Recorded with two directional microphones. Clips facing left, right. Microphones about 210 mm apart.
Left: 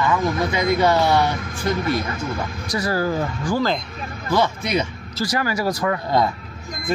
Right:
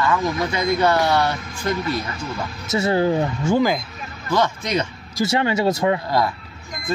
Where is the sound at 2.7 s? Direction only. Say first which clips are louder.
Right 4 dB; 25° right (ahead or behind).